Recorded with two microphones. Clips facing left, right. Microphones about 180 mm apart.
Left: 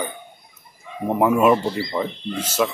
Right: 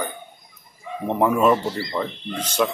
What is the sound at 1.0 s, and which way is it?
Speech, 5° left (ahead or behind).